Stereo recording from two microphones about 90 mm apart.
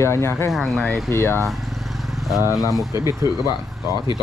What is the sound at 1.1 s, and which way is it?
Speech, 30° left (ahead or behind).